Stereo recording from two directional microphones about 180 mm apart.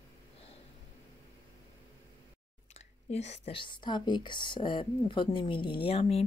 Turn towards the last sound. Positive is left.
turn(degrees=35)  # may be behind; listen again after turning